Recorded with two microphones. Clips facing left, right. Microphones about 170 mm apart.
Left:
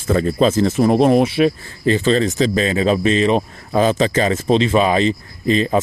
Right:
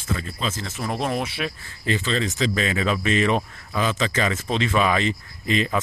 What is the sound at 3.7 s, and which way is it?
Speech, 40° left (ahead or behind).